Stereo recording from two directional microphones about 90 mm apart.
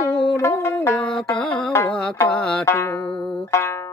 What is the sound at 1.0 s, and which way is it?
Music, 5° left (ahead or behind).